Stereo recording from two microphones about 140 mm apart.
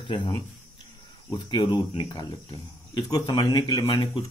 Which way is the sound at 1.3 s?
30° left (ahead or behind).